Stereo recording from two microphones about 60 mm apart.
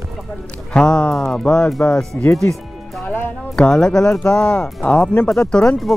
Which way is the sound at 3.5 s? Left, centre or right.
Centre.